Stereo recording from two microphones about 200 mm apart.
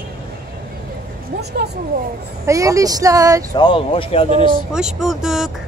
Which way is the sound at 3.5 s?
25° left (ahead or behind).